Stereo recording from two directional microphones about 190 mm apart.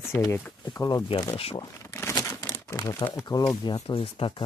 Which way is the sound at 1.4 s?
30° left (ahead or behind).